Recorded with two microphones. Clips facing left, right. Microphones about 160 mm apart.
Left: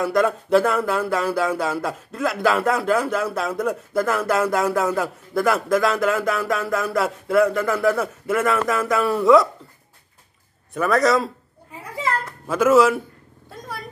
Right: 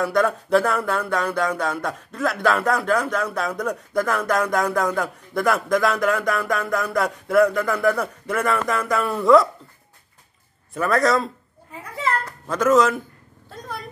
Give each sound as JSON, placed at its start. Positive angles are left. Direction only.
{"t": 0.0, "sound": "speech", "side_deg": 0}
{"t": 10.7, "sound": "speech", "side_deg": 0}
{"t": 12.4, "sound": "a man's voice", "side_deg": 5}